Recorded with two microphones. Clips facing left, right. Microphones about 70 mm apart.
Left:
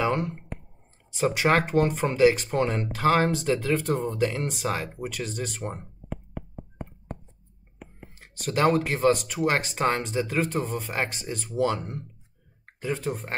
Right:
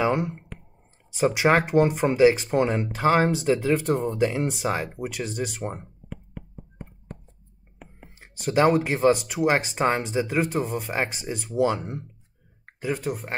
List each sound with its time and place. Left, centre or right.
0.0 s a sound: centre
1.1 s speech: centre
5.6 s speech: centre
8.0 s speech: centre